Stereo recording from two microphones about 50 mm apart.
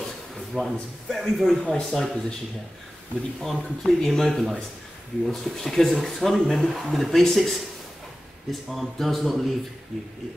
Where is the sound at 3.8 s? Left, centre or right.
Centre.